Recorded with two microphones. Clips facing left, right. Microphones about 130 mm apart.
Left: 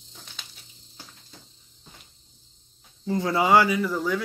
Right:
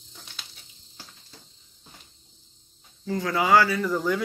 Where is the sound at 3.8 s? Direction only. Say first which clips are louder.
Right 1 dB; centre (ahead or behind).